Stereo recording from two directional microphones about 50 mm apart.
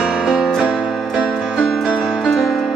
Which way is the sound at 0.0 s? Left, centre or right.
Centre.